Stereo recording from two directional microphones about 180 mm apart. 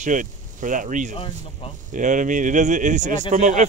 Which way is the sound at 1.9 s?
45° right (ahead or behind).